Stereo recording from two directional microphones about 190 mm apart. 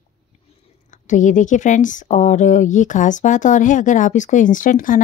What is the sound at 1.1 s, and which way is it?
Speech, 40° left (ahead or behind).